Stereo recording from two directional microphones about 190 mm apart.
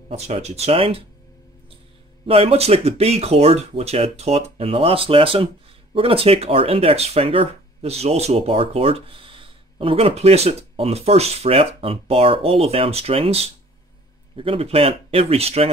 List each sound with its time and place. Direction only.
0.1 s speech: 35° right (ahead or behind)
2.2 s speech: 30° right (ahead or behind)